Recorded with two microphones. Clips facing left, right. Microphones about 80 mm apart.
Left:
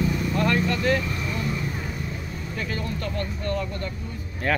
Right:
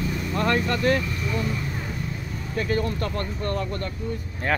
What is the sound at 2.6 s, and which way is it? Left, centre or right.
Speech, right.